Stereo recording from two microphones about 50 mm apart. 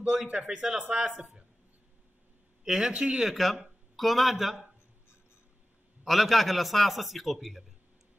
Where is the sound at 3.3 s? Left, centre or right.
Centre.